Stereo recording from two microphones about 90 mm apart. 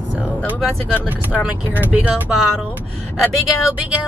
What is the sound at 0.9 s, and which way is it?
Speech, 20° right (ahead or behind).